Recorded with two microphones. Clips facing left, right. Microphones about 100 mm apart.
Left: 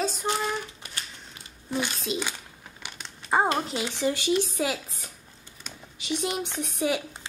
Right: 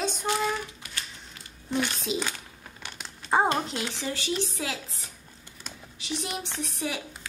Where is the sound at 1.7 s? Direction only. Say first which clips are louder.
Right 1 dB; 5° left (ahead or behind).